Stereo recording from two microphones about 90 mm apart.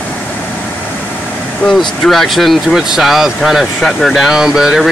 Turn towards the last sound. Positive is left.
turn(degrees=-5)  # may be behind; listen again after turning